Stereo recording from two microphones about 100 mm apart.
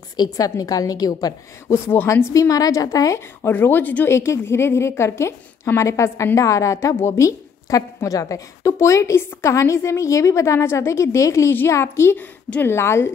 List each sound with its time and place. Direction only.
0.2 s a woman's voice: 35° left (ahead or behind)
1.9 s a woman's voice: 20° left (ahead or behind)
3.5 s a woman's voice: 20° left (ahead or behind)